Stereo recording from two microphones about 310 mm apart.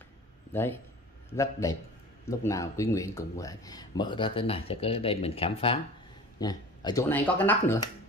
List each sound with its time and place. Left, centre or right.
0.5 s a man's voice: centre